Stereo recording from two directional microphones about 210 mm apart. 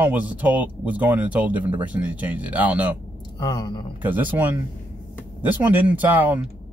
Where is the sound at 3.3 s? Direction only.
20° left (ahead or behind).